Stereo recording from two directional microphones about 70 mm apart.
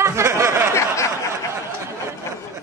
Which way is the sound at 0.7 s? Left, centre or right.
Left.